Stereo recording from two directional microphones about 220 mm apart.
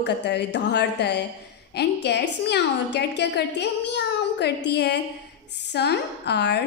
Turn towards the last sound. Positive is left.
turn(degrees=50)  # may be behind; listen again after turning